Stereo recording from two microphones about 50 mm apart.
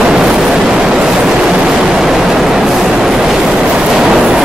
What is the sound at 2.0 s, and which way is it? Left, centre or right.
Train, centre.